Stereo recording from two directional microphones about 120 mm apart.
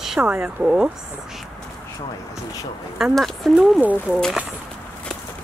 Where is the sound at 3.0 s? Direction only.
Centre (ahead or behind).